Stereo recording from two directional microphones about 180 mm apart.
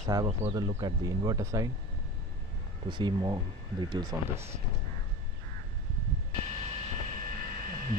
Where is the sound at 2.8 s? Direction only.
25° right (ahead or behind).